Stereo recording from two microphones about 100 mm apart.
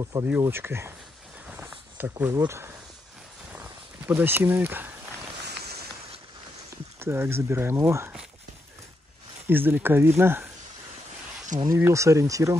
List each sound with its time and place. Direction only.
0.1 s speech: 25° right (ahead or behind)
1.7 s a sound: 15° right (ahead or behind)
2.3 s speech: 25° right (ahead or behind)
4.1 s speech: 20° right (ahead or behind)
7.0 s speech: 25° right (ahead or behind)
9.5 s speech: 20° right (ahead or behind)
11.7 s speech: 30° right (ahead or behind)